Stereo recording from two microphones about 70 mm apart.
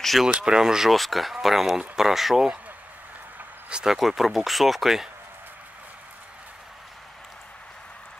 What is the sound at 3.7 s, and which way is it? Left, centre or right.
Speech, centre.